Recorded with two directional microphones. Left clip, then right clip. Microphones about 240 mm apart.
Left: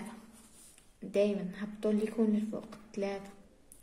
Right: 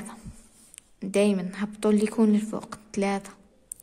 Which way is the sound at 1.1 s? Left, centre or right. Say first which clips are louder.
Right 6 dB; right.